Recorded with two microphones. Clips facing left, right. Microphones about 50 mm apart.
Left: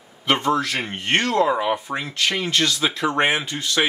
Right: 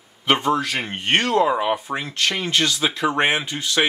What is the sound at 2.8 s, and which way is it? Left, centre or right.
Speech, centre.